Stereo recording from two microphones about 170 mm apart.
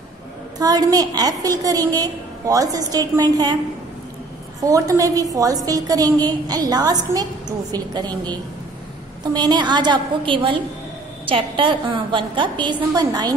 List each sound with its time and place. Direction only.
0.6 s a woman's voice: 20° right (ahead or behind)
4.6 s a woman's voice: 20° right (ahead or behind)